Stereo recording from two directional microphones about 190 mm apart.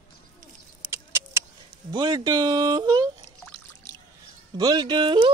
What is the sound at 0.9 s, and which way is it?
Vehicle, 15° right (ahead or behind).